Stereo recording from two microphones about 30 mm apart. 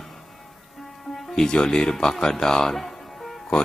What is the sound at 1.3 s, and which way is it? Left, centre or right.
Speech, left.